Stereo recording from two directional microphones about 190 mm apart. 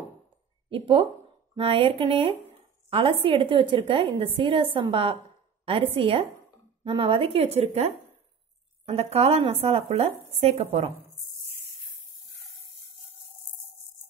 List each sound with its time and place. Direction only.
0.7 s a woman's voice: 25° right (ahead or behind)